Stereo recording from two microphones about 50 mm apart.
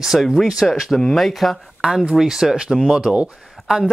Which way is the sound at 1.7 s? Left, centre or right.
Centre.